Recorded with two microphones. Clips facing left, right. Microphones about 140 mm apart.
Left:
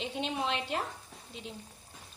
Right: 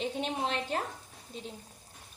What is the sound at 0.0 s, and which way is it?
Speech, 40° right (ahead or behind).